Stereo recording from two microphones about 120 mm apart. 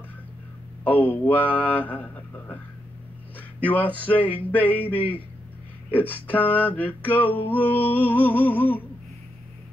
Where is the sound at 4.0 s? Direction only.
15° left (ahead or behind).